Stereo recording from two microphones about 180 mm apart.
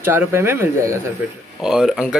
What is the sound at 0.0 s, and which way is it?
Speech, 15° right (ahead or behind).